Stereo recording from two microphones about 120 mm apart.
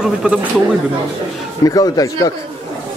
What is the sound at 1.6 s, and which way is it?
Speech, 30° left (ahead or behind).